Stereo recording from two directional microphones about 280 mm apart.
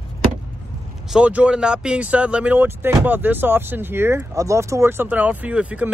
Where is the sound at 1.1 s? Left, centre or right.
Centre.